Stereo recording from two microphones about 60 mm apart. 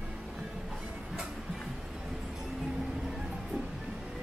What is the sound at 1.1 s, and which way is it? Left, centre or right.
Music, centre.